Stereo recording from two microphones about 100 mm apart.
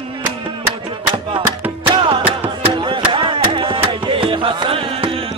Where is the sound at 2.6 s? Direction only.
60° right (ahead or behind).